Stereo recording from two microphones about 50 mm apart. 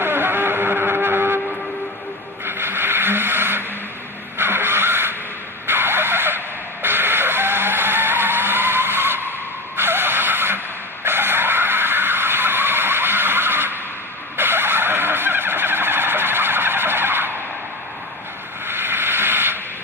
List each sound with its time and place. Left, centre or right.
0.0 s vehicle: right
2.4 s a sound: right
11.1 s vehicle: right
18.7 s hiss: right